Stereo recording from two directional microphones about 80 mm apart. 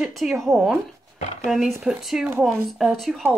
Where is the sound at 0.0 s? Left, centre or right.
Centre.